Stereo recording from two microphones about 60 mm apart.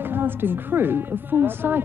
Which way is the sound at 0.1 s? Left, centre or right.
Right.